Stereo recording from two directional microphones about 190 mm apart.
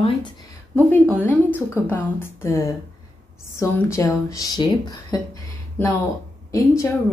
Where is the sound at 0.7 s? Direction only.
10° left (ahead or behind).